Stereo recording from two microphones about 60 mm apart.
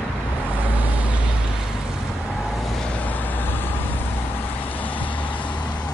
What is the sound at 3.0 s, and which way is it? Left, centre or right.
Vehicle, left.